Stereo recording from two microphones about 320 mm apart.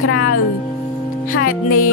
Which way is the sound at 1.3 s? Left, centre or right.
Left.